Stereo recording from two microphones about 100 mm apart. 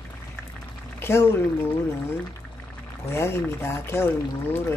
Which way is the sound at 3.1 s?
25° left (ahead or behind).